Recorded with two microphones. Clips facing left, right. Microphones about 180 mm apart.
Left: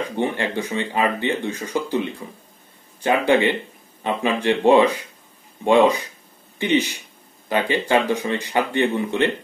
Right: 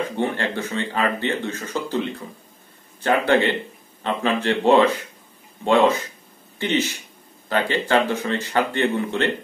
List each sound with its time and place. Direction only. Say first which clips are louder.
0.0 s speech: even; 15° left (ahead or behind)